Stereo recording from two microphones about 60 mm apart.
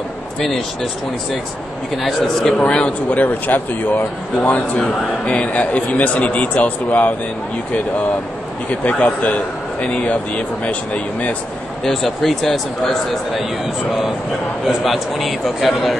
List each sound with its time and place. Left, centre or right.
2.0 s speech: centre
2.6 s speech: centre
3.1 s a man's voice: left
8.6 s a man's voice: left
11.8 s speech: centre
14.9 s speech: centre